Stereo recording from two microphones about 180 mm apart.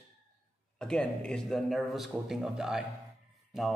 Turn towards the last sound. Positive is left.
turn(degrees=0)  # may be behind; listen again after turning